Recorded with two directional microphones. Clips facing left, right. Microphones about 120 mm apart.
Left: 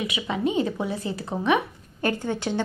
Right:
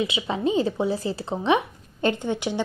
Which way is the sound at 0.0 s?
30° right (ahead or behind).